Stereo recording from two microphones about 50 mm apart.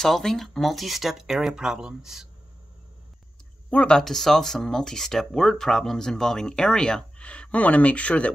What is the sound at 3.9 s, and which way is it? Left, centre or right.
Speech, centre.